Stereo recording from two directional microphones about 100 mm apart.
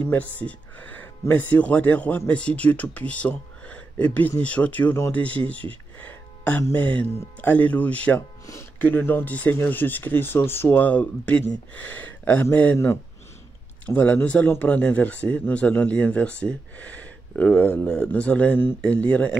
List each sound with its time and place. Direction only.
0.0 s speech: 15° left (ahead or behind)
5.7 s a sound: 15° left (ahead or behind)
6.7 s speech: 15° left (ahead or behind)
13.8 s speech: 15° left (ahead or behind)